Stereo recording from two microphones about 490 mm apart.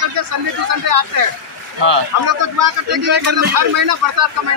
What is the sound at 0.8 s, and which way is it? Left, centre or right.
Speech, right.